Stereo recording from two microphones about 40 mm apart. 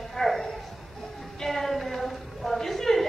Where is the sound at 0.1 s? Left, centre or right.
Centre.